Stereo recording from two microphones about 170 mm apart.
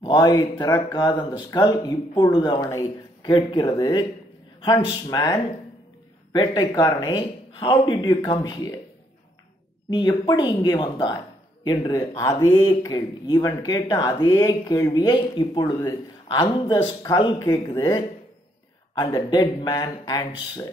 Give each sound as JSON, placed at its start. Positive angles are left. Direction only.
{"t": 0.0, "sound": "speech", "side_deg": 25}
{"t": 9.8, "sound": "speech", "side_deg": 25}
{"t": 18.9, "sound": "speech", "side_deg": 25}